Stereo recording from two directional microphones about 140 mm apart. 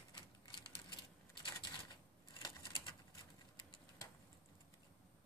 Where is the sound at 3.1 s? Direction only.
30° left (ahead or behind).